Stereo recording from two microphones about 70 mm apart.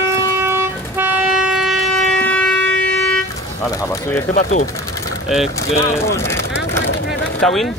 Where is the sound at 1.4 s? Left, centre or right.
Centre.